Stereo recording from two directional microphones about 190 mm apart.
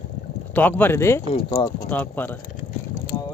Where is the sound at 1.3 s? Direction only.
30° left (ahead or behind).